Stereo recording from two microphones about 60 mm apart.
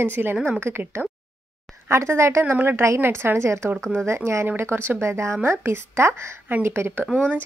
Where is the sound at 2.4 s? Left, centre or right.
Right.